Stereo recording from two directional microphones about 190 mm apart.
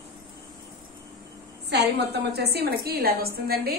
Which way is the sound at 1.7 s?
60° right (ahead or behind).